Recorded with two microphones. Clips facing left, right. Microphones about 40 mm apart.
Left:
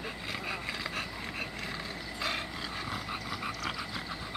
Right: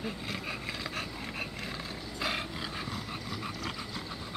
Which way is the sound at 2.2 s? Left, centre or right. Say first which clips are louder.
Right 1 dB; centre.